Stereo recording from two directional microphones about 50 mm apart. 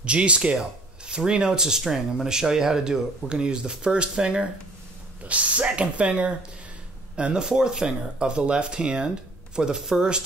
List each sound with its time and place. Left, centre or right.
0.0 s speech: right